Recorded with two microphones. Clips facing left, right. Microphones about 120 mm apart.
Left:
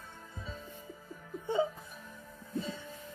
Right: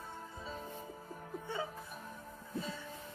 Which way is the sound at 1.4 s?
20° left (ahead or behind).